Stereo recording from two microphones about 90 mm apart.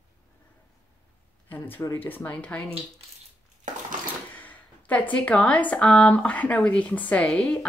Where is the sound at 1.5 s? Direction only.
20° left (ahead or behind).